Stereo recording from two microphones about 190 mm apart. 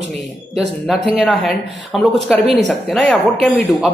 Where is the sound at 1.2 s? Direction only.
Centre (ahead or behind).